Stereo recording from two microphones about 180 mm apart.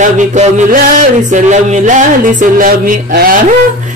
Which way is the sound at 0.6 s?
50° right (ahead or behind).